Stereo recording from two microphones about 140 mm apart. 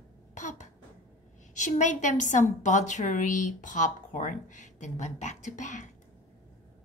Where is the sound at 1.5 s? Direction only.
60° left (ahead or behind).